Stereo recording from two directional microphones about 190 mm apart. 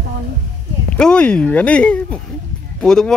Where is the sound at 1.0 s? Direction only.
5° left (ahead or behind).